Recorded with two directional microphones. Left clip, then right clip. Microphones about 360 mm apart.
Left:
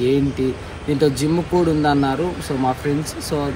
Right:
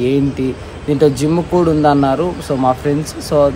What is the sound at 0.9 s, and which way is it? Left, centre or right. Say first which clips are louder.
Speech: right 5 dB; centre.